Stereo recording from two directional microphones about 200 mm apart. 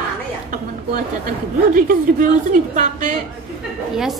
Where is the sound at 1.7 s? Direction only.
40° right (ahead or behind).